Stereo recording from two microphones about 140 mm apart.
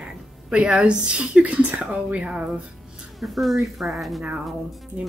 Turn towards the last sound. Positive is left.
turn(degrees=0)  # may be behind; listen again after turning